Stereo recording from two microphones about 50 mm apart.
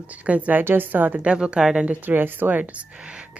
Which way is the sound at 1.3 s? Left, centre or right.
Centre.